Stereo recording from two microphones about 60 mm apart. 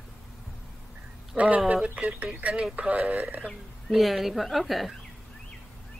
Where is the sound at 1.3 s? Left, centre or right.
Right.